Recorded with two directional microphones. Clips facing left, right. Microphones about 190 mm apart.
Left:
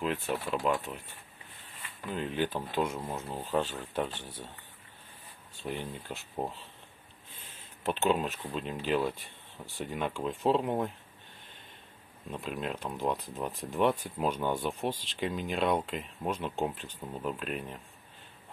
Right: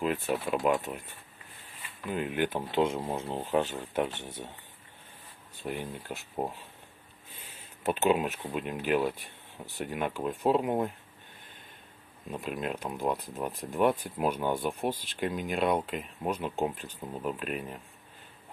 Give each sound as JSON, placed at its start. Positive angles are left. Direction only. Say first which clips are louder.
{"t": 0.0, "sound": "speech", "louder": "right 3 dB", "side_deg": -5}
{"t": 0.6, "sound": "speech", "louder": "right 3 dB", "side_deg": -15}
{"t": 2.0, "sound": "speech", "louder": "right 2 dB", "side_deg": -10}
{"t": 3.4, "sound": "speech", "louder": "right 2 dB", "side_deg": -15}
{"t": 5.6, "sound": "speech", "louder": "right 1 dB", "side_deg": -10}
{"t": 7.8, "sound": "speech", "louder": "right 2 dB", "side_deg": -10}
{"t": 12.3, "sound": "speech", "louder": "right 2 dB", "side_deg": -5}